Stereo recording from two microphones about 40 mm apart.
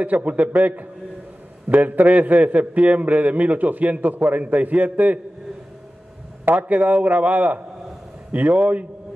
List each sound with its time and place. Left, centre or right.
0.0 s a man's voice: right
6.5 s a man's voice: right